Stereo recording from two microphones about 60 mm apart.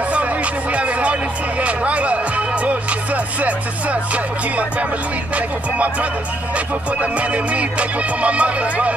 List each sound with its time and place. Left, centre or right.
0.1 s music: right
1.6 s speech: right